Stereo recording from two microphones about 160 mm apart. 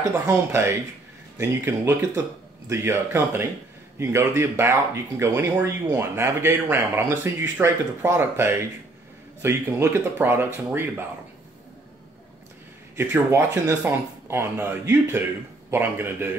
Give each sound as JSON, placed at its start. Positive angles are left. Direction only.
{"t": 0.3, "sound": "speech", "side_deg": -15}
{"t": 12.9, "sound": "speech", "side_deg": -15}